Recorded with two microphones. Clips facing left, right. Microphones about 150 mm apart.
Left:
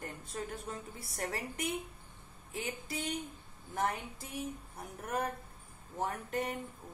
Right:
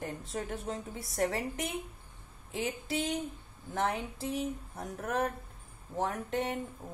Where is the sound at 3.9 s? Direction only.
80° right.